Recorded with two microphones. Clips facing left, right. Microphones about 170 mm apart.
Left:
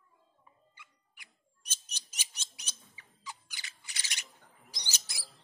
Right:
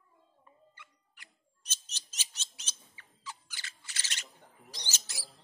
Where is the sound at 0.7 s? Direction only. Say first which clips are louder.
Right 2 dB; 10° left (ahead or behind).